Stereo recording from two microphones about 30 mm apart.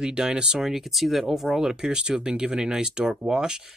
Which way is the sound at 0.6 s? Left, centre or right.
Centre.